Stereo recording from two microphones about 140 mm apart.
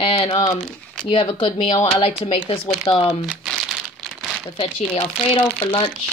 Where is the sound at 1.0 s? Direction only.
35° left (ahead or behind).